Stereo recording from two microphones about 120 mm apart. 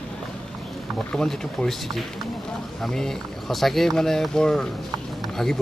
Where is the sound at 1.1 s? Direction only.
5° left (ahead or behind).